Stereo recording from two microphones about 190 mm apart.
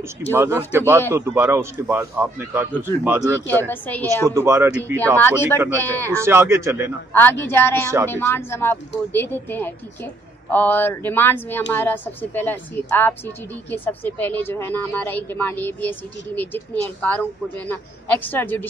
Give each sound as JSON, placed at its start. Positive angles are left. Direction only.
{"t": 0.3, "sound": "a man's voice", "side_deg": -10}
{"t": 3.7, "sound": "speech", "side_deg": 10}
{"t": 4.3, "sound": "a man's voice", "side_deg": -15}
{"t": 7.1, "sound": "speech", "side_deg": 10}